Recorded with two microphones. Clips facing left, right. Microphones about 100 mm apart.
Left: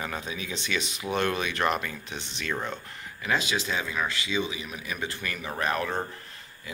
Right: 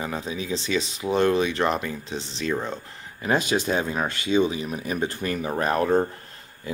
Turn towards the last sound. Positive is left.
turn(degrees=-35)  # may be behind; listen again after turning